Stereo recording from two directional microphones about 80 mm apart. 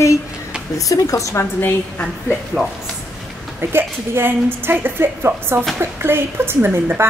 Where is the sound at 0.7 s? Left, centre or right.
Left.